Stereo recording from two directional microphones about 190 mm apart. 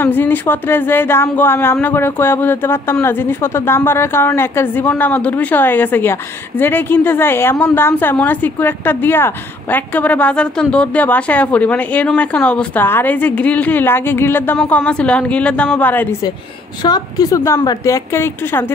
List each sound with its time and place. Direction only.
0.0 s speech: 10° left (ahead or behind)